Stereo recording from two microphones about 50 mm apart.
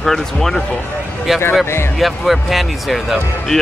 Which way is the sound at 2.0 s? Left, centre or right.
Centre.